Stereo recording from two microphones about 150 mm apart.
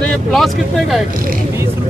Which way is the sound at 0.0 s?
5° left (ahead or behind).